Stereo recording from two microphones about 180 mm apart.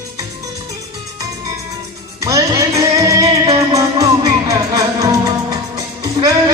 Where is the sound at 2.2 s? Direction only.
15° right (ahead or behind).